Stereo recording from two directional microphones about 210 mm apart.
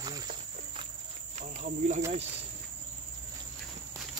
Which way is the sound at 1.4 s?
30° right (ahead or behind).